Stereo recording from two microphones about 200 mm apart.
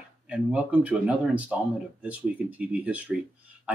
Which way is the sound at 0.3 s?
5° right (ahead or behind).